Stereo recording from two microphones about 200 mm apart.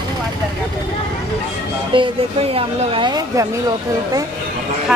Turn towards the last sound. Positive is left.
turn(degrees=-20)  # may be behind; listen again after turning